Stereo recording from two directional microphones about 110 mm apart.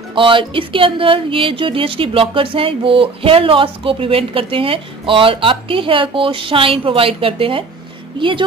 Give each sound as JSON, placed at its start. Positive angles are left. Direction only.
{"t": 0.1, "sound": "speech", "side_deg": -50}